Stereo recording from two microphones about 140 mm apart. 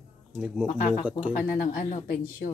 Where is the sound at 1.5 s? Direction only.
80° left.